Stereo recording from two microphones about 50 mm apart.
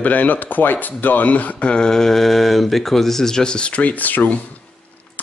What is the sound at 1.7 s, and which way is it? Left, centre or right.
Speech, centre.